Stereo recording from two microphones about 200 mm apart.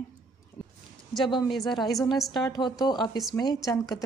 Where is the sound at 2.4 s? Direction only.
20° left (ahead or behind).